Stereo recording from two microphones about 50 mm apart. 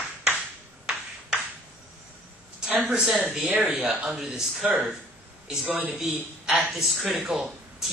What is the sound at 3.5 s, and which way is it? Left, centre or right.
Speech, right.